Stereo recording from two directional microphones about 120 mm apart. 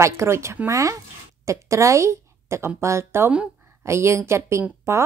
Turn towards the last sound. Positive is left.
turn(degrees=-25)  # may be behind; listen again after turning